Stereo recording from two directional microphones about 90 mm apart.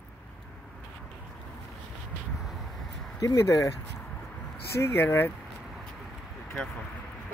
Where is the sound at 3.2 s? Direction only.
35° left (ahead or behind).